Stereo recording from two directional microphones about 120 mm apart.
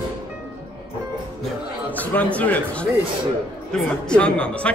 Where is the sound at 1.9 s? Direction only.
15° left (ahead or behind).